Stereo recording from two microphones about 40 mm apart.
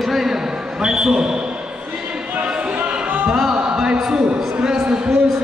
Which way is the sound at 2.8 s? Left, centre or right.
Right.